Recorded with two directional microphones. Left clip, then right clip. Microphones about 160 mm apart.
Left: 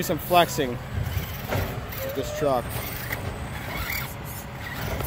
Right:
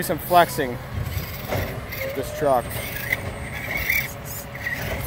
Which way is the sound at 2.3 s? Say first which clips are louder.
Right 4 dB; 5° left (ahead or behind).